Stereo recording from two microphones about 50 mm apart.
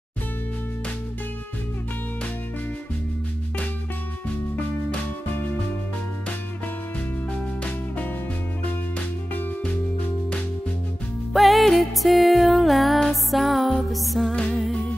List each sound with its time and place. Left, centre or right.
9.6 s music: left
11.3 s music: centre